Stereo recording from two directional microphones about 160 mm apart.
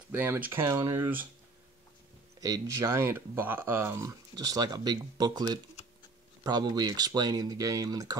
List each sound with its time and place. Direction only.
0.1 s speech: 15° right (ahead or behind)
2.4 s speech: 20° right (ahead or behind)